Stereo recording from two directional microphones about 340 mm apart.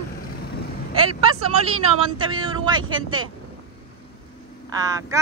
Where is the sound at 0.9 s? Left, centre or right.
Right.